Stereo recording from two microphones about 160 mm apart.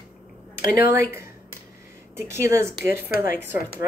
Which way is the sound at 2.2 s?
15° right (ahead or behind).